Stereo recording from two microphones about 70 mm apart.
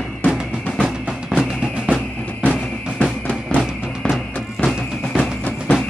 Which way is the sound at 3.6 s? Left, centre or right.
Centre.